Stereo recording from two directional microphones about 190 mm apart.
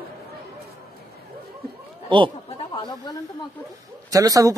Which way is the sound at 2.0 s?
25° right (ahead or behind).